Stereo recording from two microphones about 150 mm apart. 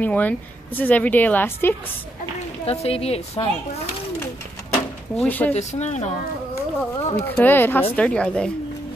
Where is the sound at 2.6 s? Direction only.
45° left (ahead or behind).